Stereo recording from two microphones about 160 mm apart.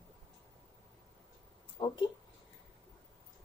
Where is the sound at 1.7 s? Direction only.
30° left (ahead or behind).